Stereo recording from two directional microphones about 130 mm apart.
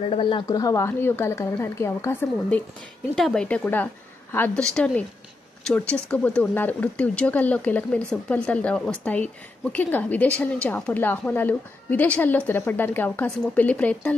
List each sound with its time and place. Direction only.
0.1 s speech: 40° left (ahead or behind)
0.5 s a woman's voice: 25° left (ahead or behind)
3.2 s speech: 5° left (ahead or behind)